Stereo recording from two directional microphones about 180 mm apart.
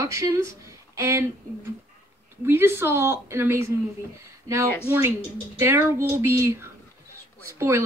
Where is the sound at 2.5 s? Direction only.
15° right (ahead or behind).